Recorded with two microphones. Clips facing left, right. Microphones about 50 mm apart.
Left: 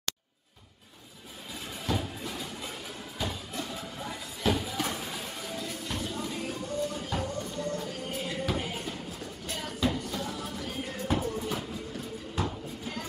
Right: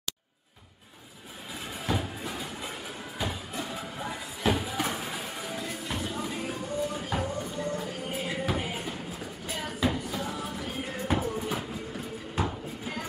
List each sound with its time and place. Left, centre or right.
1.9 s music: centre
3.2 s a sound: centre
9.5 s music: centre